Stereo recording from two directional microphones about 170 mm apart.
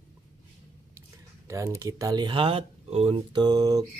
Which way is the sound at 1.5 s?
20° right (ahead or behind).